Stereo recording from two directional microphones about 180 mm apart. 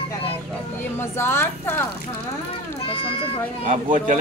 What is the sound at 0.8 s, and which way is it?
Speech, 10° left (ahead or behind).